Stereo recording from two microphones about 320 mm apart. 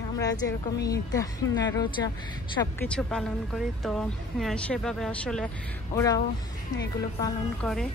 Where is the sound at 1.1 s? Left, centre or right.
Centre.